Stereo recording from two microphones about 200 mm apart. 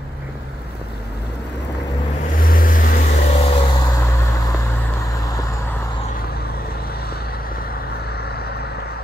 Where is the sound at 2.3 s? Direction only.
45° left (ahead or behind); by 5.7 s 15° left (ahead or behind).